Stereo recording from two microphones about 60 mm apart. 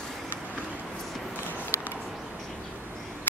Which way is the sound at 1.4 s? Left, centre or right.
Right.